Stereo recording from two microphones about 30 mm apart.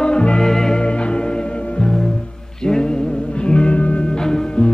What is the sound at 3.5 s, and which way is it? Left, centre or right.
Music, left.